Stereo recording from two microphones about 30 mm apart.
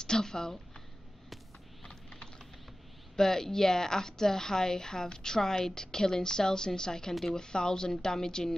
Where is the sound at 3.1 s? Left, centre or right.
Centre.